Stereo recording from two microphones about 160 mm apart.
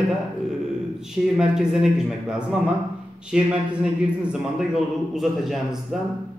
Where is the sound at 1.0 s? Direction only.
5° right (ahead or behind).